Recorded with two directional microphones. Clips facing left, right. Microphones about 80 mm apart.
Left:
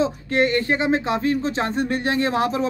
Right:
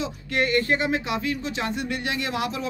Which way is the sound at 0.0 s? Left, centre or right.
Left.